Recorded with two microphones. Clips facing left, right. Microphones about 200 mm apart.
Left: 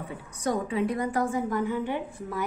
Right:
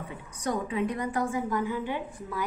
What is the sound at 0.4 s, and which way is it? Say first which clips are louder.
A woman's voice: left 2 dB; 35° left (ahead or behind).